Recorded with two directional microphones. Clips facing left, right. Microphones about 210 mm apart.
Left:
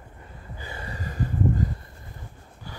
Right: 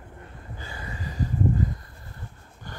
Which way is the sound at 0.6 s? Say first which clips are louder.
Left 2 dB; 25° left (ahead or behind).